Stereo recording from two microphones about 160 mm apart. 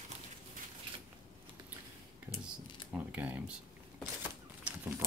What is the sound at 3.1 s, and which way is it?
Speech, 10° right (ahead or behind).